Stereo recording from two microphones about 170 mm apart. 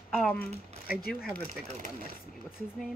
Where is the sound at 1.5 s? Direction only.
40° right (ahead or behind).